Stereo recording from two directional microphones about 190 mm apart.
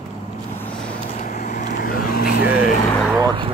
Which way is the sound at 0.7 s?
5° left (ahead or behind).